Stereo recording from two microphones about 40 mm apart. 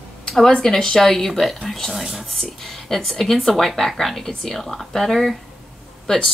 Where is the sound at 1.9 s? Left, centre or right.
Centre.